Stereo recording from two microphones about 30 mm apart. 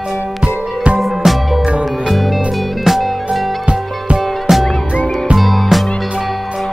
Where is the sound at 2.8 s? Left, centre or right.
Centre.